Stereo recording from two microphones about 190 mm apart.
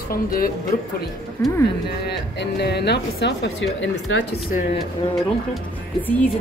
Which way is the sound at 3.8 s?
80° left.